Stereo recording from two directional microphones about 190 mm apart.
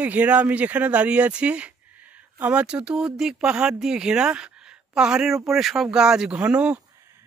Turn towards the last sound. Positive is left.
turn(degrees=-5)  # may be behind; listen again after turning